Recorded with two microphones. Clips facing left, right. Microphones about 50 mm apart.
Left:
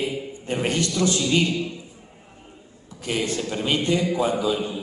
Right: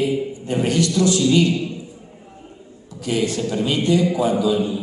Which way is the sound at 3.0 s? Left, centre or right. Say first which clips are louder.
Right 4 dB; left.